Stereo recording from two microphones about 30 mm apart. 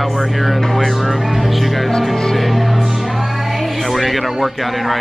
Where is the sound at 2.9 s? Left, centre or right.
Centre.